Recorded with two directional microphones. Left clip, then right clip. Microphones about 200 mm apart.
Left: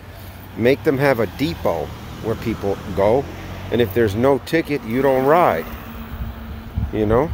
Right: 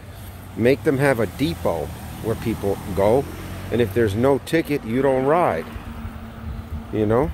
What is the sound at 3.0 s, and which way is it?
Speech, centre (ahead or behind).